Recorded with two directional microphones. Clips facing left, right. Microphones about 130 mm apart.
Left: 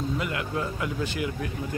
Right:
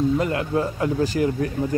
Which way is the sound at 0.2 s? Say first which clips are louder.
Right 7 dB; 35° right (ahead or behind).